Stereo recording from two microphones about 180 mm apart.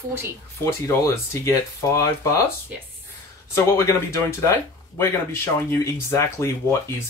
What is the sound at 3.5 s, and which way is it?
Speech, 15° left (ahead or behind).